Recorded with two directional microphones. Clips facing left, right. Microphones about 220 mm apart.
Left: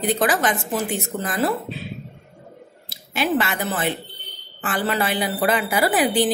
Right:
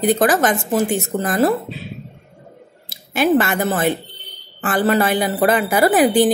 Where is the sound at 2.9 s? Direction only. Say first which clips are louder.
Right 6 dB; 50° right (ahead or behind).